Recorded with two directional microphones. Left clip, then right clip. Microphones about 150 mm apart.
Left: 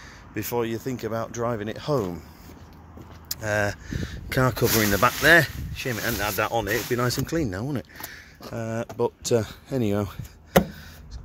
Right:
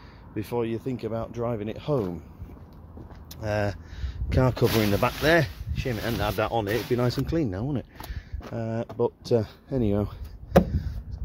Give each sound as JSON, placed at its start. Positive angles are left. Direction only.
{"t": 0.3, "sound": "speech", "side_deg": 0}
{"t": 3.3, "sound": "speech", "side_deg": -10}